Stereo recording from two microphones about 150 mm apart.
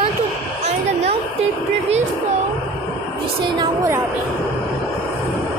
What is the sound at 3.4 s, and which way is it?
Speech, 30° right (ahead or behind).